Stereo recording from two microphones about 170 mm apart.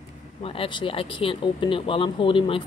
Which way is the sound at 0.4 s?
35° left (ahead or behind).